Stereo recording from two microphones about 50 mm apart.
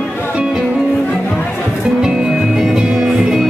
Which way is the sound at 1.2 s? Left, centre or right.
Left.